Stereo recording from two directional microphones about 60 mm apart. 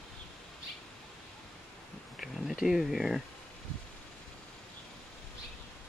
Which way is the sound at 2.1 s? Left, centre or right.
Centre.